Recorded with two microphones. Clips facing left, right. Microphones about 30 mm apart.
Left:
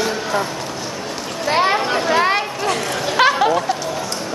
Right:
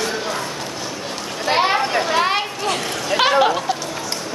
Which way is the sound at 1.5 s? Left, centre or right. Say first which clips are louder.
Left 1 dB; centre.